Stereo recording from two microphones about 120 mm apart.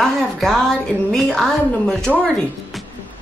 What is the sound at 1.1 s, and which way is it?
A woman's voice, centre (ahead or behind).